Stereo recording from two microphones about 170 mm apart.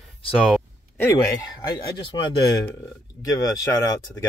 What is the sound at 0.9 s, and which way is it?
Speech, 15° left (ahead or behind).